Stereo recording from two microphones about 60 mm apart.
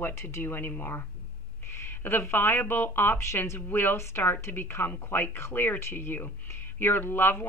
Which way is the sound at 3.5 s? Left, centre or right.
Left.